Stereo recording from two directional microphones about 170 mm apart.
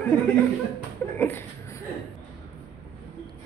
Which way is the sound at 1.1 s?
10° left (ahead or behind).